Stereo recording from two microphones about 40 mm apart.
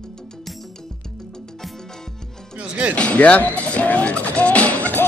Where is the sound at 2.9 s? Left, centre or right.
Left.